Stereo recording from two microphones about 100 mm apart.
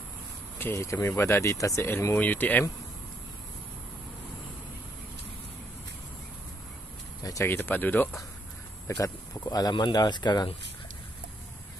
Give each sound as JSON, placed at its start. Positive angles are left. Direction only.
{"t": 0.6, "sound": "speech", "side_deg": 25}
{"t": 7.4, "sound": "speech", "side_deg": 20}
{"t": 8.8, "sound": "speech", "side_deg": 35}